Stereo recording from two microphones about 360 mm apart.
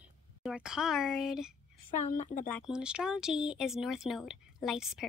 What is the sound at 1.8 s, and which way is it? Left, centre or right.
Speech, left.